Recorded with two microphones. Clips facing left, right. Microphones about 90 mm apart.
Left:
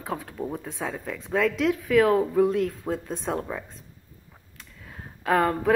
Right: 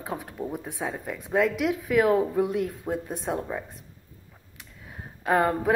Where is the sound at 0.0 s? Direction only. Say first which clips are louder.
Left 1 dB; 15° right (ahead or behind).